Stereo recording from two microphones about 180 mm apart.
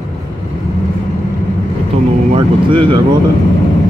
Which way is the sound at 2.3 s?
30° right (ahead or behind).